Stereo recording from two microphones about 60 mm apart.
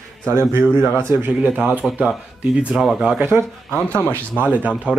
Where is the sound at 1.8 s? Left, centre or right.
Centre.